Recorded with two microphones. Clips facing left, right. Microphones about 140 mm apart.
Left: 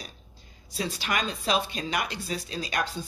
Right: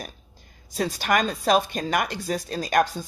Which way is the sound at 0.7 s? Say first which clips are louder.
Right 7 dB; 45° right (ahead or behind).